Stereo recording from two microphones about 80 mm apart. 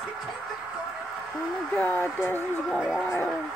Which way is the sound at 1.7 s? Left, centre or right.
Left.